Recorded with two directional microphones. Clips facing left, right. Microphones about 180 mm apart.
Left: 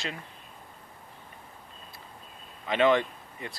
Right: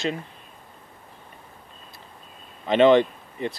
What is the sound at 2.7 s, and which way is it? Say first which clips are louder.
Speech: right 7 dB; 25° right (ahead or behind).